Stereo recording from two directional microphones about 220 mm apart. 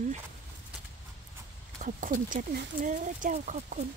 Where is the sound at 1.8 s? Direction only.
35° right (ahead or behind).